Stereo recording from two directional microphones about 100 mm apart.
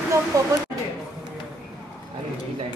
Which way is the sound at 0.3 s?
35° right (ahead or behind).